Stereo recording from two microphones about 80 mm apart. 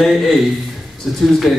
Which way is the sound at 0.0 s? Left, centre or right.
Centre.